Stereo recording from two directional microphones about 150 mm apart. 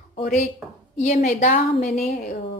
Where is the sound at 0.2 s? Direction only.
55° left (ahead or behind).